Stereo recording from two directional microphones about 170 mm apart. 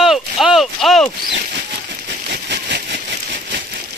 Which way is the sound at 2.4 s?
80° right.